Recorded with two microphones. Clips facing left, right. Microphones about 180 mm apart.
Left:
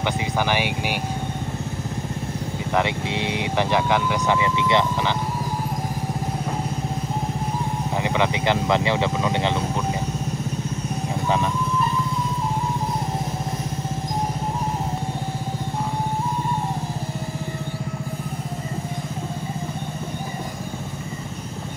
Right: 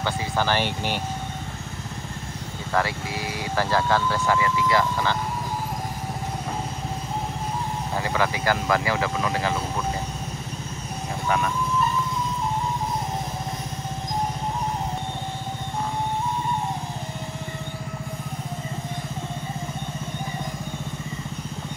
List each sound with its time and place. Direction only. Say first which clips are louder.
0.0 s speech: left 2 dB; 15° left (ahead or behind)
2.7 s speech: left 2 dB; 20° left (ahead or behind)
8.0 s speech: left 3 dB; 20° left (ahead or behind)